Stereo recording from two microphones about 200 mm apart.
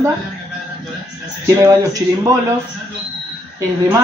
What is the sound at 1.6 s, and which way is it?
Speech, 15° right (ahead or behind).